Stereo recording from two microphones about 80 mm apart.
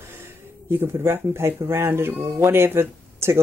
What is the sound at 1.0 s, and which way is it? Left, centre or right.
Speech, right.